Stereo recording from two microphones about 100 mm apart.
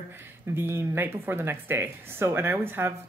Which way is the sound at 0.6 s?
25° right (ahead or behind).